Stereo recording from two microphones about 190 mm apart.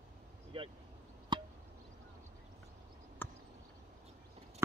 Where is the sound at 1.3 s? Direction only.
25° right (ahead or behind).